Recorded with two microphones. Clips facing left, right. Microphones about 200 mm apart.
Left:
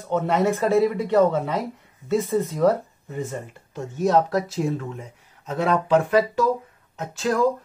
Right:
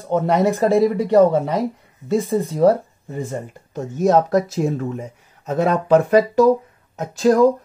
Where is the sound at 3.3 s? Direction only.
40° right (ahead or behind).